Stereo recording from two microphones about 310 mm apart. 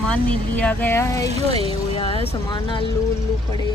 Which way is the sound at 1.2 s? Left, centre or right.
Centre.